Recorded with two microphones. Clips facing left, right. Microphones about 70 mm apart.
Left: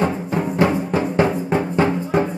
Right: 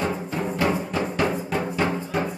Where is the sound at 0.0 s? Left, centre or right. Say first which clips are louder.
Left 5 dB; left.